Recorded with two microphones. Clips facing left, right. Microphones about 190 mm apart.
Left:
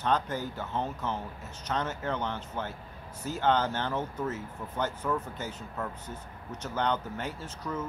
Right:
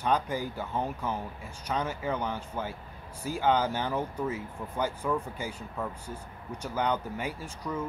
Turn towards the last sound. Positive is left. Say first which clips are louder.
# right 1 dB
turn(degrees=-10)  # may be behind; listen again after turning